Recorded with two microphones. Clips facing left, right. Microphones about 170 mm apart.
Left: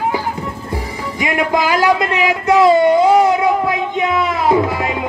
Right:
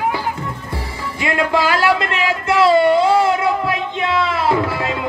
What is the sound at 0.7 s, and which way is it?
Music, 20° left (ahead or behind).